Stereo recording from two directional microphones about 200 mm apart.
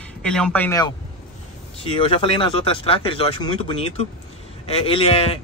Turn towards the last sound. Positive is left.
turn(degrees=30)  # may be behind; listen again after turning